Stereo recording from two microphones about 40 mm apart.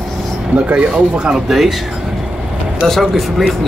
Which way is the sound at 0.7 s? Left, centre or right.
Right.